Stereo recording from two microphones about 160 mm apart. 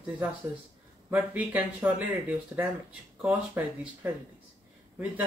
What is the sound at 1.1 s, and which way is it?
Speech, 10° right (ahead or behind).